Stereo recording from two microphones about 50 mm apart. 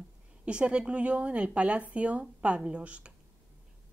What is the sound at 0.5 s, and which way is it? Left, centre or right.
Speech, right.